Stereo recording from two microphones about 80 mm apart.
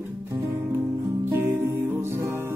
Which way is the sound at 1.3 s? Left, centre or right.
Right.